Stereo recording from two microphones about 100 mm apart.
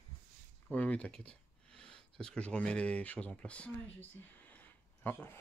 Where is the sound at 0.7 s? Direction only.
15° left (ahead or behind).